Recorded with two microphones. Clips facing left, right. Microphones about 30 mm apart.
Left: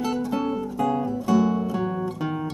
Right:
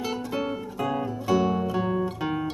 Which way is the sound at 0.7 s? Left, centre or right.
Centre.